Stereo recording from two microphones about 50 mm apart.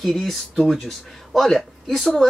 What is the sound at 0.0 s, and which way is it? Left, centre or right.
Speech, centre.